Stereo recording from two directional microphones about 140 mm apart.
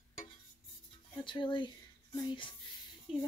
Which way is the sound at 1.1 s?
35° left (ahead or behind).